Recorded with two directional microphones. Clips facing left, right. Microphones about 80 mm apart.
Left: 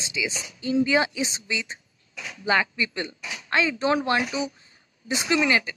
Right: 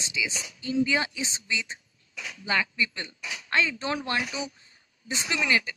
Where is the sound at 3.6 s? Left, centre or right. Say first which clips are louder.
Left 5 dB; centre.